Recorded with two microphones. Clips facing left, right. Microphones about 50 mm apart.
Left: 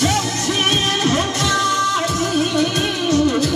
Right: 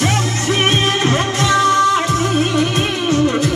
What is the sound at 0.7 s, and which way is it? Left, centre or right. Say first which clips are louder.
Music: right 1 dB; right.